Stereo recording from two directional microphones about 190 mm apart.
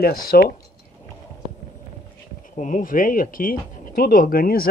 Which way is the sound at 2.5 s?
40° left (ahead or behind).